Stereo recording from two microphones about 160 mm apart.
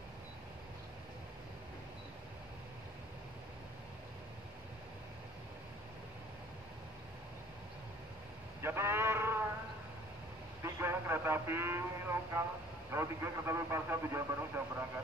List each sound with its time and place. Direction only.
8.6 s a sound: 15° right (ahead or behind)
10.6 s radio: 15° right (ahead or behind)
12.9 s speech: 15° right (ahead or behind)